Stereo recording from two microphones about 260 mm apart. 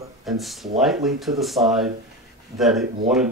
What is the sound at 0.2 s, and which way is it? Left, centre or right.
Speech, centre.